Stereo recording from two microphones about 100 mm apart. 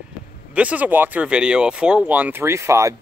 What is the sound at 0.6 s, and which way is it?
Speech, 15° right (ahead or behind).